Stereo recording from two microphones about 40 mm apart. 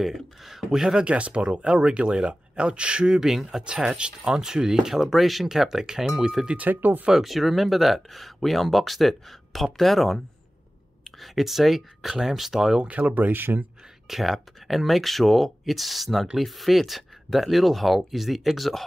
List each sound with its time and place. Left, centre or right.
0.0 s speech: centre
0.9 s speech: right
3.2 s speech: centre
6.5 s speech: right
7.2 s speech: centre
13.1 s speech: right
14.0 s speech: centre